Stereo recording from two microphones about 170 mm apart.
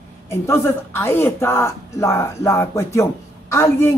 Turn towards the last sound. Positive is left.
turn(degrees=15)  # may be behind; listen again after turning